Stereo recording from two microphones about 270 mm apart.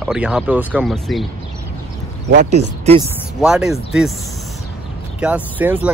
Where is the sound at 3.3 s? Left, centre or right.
Centre.